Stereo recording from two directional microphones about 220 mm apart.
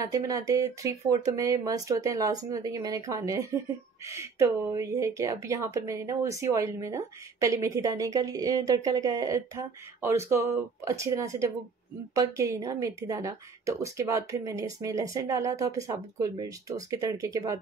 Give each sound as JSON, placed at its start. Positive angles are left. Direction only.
{"t": 0.1, "sound": "speech", "side_deg": -15}